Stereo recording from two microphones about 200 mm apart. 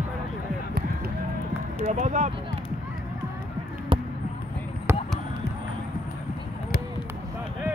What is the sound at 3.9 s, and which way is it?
Basketball bounce, 25° right (ahead or behind).